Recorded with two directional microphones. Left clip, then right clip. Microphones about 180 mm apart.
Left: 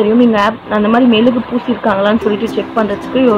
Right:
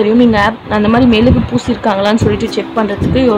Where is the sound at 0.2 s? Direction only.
25° right (ahead or behind).